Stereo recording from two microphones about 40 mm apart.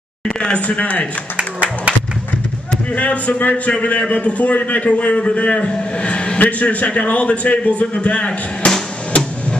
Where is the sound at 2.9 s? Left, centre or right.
Left.